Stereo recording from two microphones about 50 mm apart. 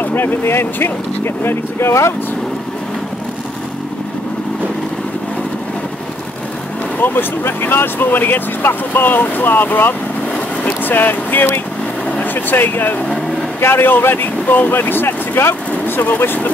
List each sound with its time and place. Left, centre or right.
0.0 s speech: left
7.0 s speech: left